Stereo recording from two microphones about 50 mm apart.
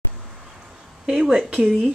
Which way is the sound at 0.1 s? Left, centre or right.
Centre.